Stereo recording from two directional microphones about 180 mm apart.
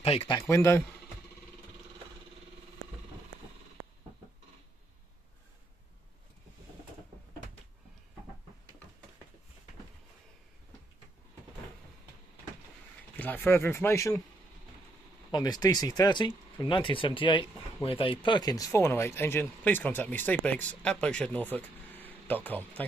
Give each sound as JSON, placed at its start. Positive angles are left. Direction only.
{"t": 0.0, "sound": "speech", "side_deg": 35}
{"t": 0.4, "sound": "speech", "side_deg": 15}
{"t": 13.1, "sound": "speech", "side_deg": 10}
{"t": 15.3, "sound": "speech", "side_deg": 20}